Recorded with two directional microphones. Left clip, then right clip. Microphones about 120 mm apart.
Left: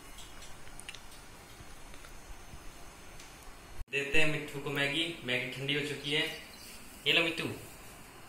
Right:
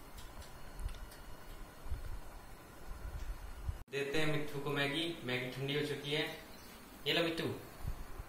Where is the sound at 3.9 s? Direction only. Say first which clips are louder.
Left 6 dB; 40° right (ahead or behind).